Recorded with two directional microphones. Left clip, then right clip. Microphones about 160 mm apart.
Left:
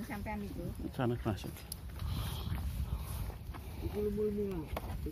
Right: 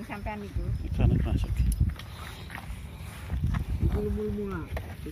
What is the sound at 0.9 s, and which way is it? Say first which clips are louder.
Speech: right 3 dB; 40° left (ahead or behind).